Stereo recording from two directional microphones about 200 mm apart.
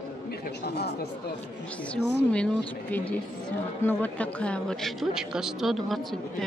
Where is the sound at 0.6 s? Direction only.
55° left (ahead or behind).